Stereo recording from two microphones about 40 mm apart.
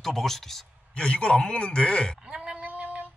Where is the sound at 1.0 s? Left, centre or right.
Left.